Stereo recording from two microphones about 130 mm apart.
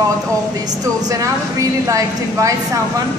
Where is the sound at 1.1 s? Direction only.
25° right (ahead or behind).